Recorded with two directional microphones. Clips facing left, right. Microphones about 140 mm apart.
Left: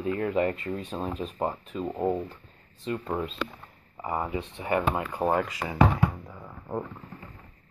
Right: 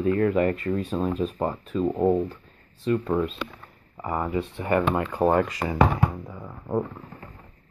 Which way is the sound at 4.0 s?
15° left (ahead or behind).